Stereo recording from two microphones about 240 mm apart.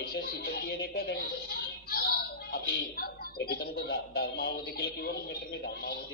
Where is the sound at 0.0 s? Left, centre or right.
Left.